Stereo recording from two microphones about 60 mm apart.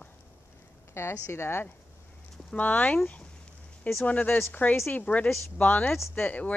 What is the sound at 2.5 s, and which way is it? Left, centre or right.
Speech, left.